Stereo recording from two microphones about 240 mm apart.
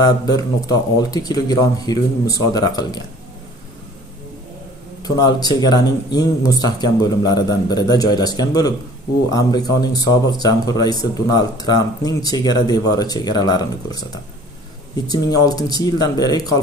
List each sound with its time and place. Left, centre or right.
0.0 s speech: centre
5.0 s speech: centre